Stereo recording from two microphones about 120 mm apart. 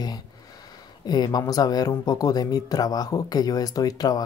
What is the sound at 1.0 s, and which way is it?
Speech, 35° left (ahead or behind).